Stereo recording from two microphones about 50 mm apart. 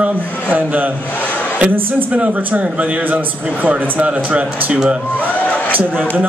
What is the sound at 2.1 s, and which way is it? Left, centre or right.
Speech, right.